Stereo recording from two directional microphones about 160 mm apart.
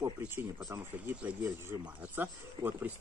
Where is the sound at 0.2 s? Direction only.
10° right (ahead or behind).